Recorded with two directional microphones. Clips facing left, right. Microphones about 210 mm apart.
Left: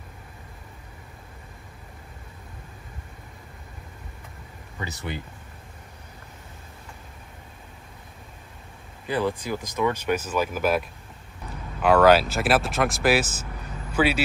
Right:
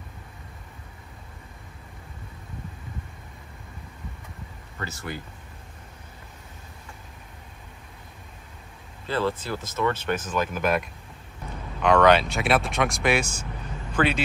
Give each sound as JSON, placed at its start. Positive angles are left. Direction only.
{"t": 4.7, "sound": "speech", "side_deg": 15}
{"t": 9.0, "sound": "speech", "side_deg": 15}